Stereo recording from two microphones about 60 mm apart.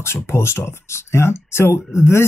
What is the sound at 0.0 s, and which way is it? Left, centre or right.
Speech, left.